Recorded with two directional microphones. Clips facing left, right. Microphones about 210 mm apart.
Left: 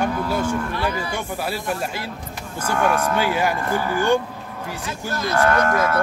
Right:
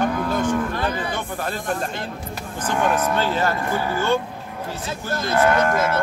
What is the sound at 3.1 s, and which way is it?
Speech, 15° left (ahead or behind).